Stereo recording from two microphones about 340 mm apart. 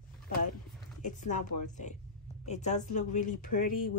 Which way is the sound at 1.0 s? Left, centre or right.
Left.